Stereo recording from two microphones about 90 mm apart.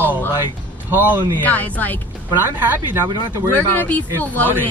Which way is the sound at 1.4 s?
20° left (ahead or behind).